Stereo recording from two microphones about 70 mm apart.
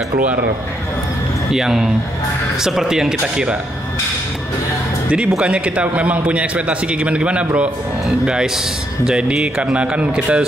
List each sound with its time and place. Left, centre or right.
1.5 s a man's voice: centre
5.4 s a man's voice: centre
9.0 s a man's voice: centre